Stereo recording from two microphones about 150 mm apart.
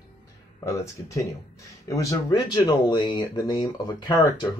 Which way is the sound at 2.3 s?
30° left (ahead or behind).